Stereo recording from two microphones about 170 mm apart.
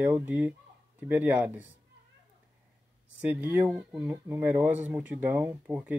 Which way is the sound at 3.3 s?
10° right (ahead or behind).